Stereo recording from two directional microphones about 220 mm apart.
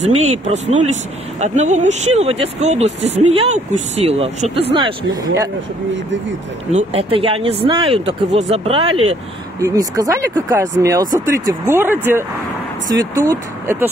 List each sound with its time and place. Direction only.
0.0 s speech: 30° right (ahead or behind)
6.7 s speech: 30° right (ahead or behind)
9.6 s speech: 15° right (ahead or behind)